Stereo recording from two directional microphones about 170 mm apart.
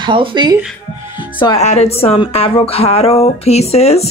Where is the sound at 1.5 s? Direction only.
40° left (ahead or behind).